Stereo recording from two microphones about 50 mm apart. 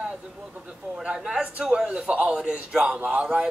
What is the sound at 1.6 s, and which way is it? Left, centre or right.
A man's voice, centre.